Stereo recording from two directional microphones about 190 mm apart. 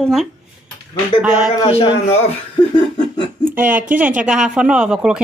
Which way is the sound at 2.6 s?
25° left (ahead or behind).